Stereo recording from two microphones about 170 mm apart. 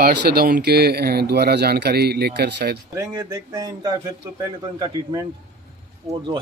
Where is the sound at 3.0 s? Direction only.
20° right (ahead or behind).